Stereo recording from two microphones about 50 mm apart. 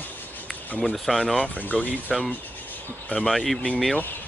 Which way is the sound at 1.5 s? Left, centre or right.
Left.